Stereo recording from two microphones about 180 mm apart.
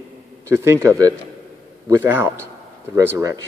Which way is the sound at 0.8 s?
20° right (ahead or behind).